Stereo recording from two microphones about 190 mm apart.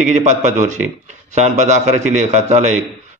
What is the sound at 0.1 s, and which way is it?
A man's voice, 40° right (ahead or behind).